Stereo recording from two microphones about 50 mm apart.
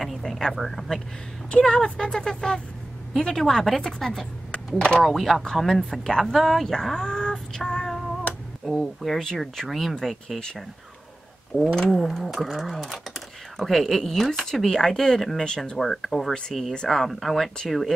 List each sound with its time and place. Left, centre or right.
0.0 s a woman's voice: centre
4.7 s speech: centre
5.0 s a woman's voice: centre
6.3 s speech: centre
11.5 s speech: left
11.9 s speech: centre
15.4 s a woman's voice: centre
15.8 s speech: centre